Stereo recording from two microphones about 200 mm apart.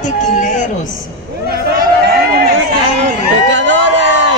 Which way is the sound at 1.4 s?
50° right (ahead or behind).